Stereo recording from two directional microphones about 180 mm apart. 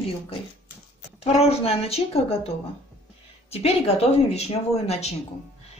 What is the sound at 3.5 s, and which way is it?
Speech, 35° left (ahead or behind).